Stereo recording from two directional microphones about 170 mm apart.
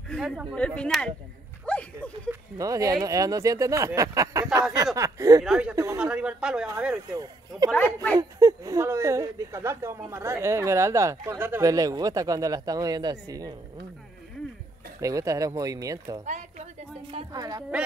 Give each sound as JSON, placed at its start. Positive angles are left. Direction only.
{"t": 0.1, "sound": "speech", "side_deg": -5}
{"t": 1.7, "sound": "a sound", "side_deg": 5}
{"t": 2.5, "sound": "speech", "side_deg": -20}
{"t": 5.4, "sound": "speech", "side_deg": -5}
{"t": 7.1, "sound": "speech", "side_deg": -20}
{"t": 7.7, "sound": "speech", "side_deg": 10}
{"t": 8.2, "sound": "speech", "side_deg": -20}
{"t": 15.0, "sound": "speech", "side_deg": -20}
{"t": 16.3, "sound": "a sound", "side_deg": -45}
{"t": 17.3, "sound": "speech", "side_deg": -20}